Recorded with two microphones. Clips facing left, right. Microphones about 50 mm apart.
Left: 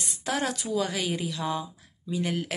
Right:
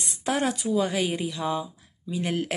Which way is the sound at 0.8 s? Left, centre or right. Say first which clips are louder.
Right 3 dB; right.